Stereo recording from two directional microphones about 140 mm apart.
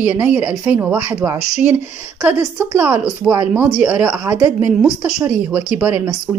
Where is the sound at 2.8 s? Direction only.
10° right (ahead or behind).